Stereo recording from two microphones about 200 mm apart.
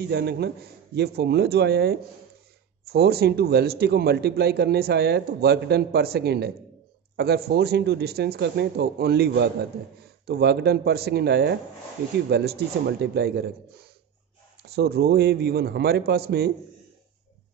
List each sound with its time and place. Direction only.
0.0 s a man's voice: 55° right (ahead or behind)